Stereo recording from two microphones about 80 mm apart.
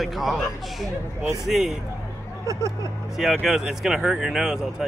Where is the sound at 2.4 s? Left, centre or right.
Right.